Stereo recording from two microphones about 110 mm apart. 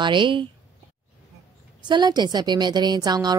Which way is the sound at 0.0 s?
45° right (ahead or behind).